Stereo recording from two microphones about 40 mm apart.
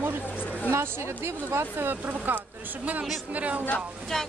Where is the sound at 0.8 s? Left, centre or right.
Right.